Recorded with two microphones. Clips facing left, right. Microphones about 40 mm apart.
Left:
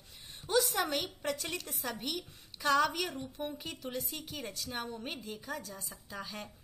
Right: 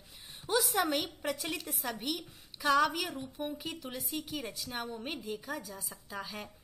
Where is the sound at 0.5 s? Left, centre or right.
Centre.